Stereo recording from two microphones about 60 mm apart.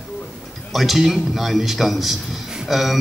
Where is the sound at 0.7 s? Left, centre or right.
Centre.